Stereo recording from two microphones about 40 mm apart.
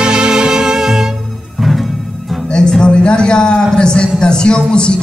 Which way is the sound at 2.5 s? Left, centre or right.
Centre.